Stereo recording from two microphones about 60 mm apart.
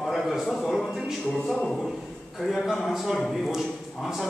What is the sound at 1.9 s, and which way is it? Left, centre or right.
A man's voice, centre.